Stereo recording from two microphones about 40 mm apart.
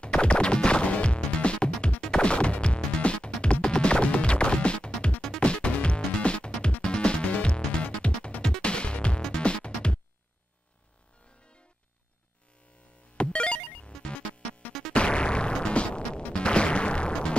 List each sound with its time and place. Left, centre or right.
0.0 s music: left
7.2 s music: left
13.2 s music: left
14.6 s music: left
15.0 s music: left